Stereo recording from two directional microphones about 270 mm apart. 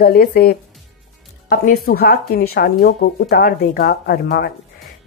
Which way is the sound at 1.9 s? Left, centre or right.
Left.